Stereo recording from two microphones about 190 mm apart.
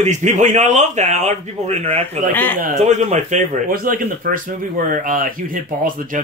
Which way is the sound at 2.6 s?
40° right (ahead or behind).